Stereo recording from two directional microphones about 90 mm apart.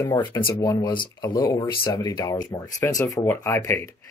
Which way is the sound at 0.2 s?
25° left (ahead or behind).